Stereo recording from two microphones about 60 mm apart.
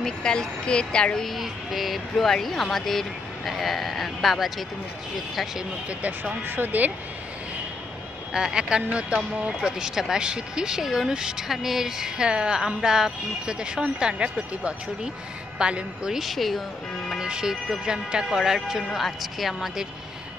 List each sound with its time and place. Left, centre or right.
0.0 s speech: centre
1.2 s speech: centre
5.9 s speech: right
6.4 s speech: right
8.3 s speech: centre
17.2 s speech: centre